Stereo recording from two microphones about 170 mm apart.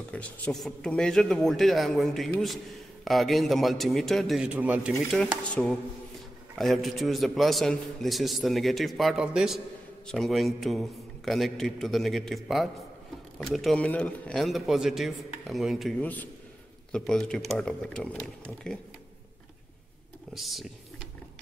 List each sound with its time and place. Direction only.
0.1 s a man's voice: 5° left (ahead or behind)
5.5 s a man's voice: centre (ahead or behind)
20.3 s speech: centre (ahead or behind)